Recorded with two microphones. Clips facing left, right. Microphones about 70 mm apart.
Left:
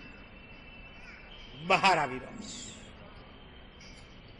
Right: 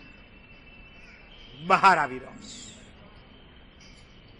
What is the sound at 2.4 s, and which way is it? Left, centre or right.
Speech, right.